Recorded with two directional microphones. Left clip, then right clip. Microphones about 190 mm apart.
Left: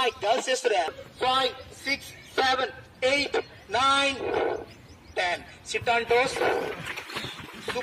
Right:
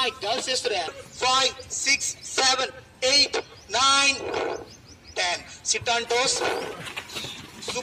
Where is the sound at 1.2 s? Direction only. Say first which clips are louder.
Right 2 dB; 45° left (ahead or behind).